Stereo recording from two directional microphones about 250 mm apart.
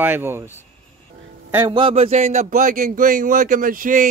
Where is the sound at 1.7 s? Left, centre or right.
Right.